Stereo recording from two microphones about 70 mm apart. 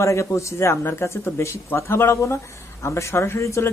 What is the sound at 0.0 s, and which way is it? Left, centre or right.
Speech, left.